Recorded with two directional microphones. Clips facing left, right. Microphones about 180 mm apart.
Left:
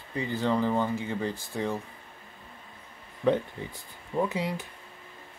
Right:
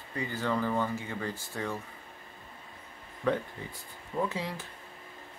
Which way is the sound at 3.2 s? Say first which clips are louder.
Left 5 dB; 20° left (ahead or behind).